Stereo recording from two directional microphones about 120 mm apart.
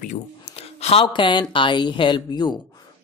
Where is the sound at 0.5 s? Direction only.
55° left (ahead or behind).